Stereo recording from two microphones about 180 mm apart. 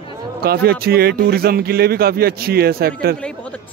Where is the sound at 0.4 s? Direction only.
60° right (ahead or behind).